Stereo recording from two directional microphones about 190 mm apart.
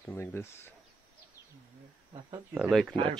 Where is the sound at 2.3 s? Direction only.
10° right (ahead or behind).